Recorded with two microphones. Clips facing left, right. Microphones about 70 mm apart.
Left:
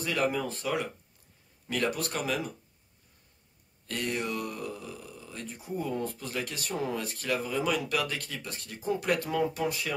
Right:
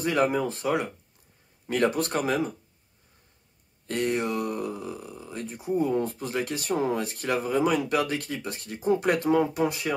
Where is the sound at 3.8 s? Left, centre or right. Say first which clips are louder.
Right 6 dB; right.